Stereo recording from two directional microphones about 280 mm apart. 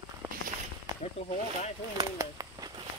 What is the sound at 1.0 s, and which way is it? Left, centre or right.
Speech, left.